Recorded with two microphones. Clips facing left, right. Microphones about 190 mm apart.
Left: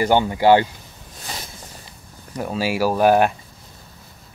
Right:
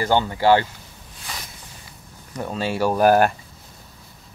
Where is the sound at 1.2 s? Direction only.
30° left (ahead or behind).